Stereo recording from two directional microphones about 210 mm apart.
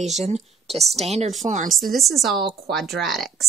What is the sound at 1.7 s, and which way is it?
Speech, centre (ahead or behind).